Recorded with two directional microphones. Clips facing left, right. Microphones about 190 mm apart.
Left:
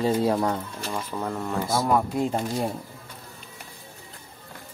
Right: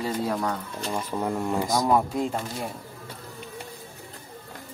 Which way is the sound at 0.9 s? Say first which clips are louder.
Right 3 dB; 15° right (ahead or behind).